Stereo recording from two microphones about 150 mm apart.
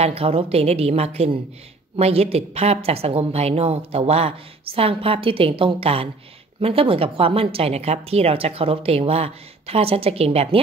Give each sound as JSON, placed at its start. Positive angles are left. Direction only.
{"t": 0.0, "sound": "a woman's voice", "side_deg": -40}